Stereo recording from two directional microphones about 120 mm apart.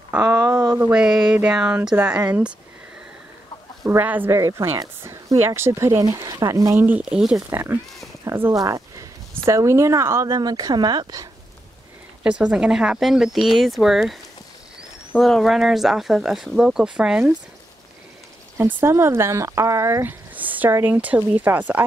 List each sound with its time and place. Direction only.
0.1 s speech: 15° right (ahead or behind)
4.0 s speech: 15° right (ahead or behind)
4.4 s speech: 25° right (ahead or behind); by 7.3 s 5° right (ahead or behind)
7.4 s speech: 15° right (ahead or behind); by 11.2 s 35° right (ahead or behind)
12.2 s speech: 10° right (ahead or behind)
15.1 s speech: centre (ahead or behind)
18.8 s speech: 20° right (ahead or behind)